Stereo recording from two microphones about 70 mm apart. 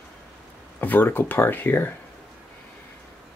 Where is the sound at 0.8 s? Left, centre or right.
Left.